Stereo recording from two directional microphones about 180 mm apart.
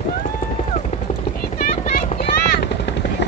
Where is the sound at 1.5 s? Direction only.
50° left (ahead or behind).